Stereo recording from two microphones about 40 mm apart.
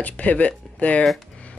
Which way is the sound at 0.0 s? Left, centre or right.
Left.